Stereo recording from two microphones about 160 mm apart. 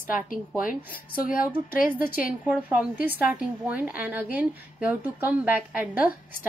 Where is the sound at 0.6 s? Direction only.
60° left (ahead or behind).